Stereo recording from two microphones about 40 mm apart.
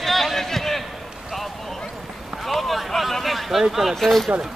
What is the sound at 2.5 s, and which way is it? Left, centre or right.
Speech, centre.